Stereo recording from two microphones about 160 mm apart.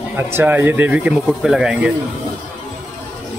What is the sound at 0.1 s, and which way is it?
Speech, 15° right (ahead or behind).